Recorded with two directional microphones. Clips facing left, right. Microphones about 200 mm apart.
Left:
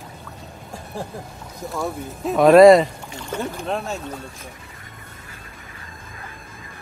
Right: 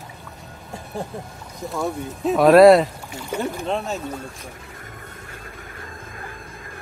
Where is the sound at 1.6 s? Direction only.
Centre (ahead or behind).